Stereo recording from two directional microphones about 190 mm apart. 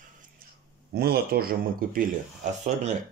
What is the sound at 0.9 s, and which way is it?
Speech, 55° right (ahead or behind).